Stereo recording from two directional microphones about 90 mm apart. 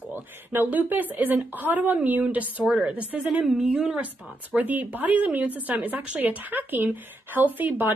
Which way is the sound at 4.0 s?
15° right (ahead or behind).